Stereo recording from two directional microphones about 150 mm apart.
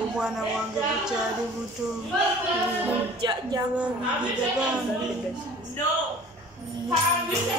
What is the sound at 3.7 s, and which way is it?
Speech, 10° right (ahead or behind).